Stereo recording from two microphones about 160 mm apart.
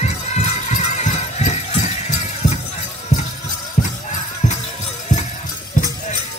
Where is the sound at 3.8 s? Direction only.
50° left (ahead or behind).